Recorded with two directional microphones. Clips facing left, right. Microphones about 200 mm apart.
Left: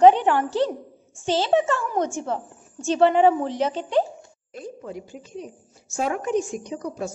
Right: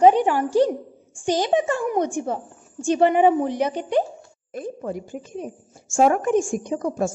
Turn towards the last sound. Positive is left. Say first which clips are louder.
# right 6 dB
turn(degrees=-50)  # may be behind; listen again after turning